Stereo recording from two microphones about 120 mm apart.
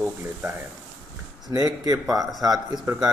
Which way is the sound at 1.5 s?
30° right (ahead or behind).